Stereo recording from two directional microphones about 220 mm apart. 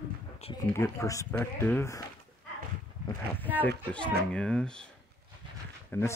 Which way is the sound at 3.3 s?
10° left (ahead or behind).